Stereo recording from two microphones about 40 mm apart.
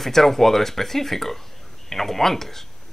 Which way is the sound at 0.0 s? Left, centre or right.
Centre.